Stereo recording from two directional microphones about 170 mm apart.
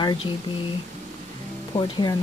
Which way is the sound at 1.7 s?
25° left (ahead or behind).